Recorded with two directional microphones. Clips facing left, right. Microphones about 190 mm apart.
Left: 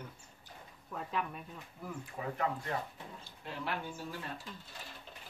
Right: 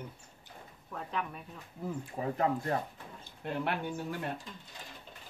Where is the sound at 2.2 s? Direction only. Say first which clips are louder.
Right 5 dB; 35° right (ahead or behind).